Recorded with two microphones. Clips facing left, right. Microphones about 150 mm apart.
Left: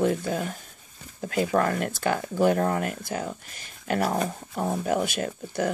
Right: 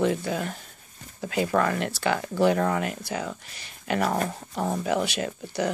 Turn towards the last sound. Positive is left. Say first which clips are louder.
# even
turn(degrees=45)  # may be behind; listen again after turning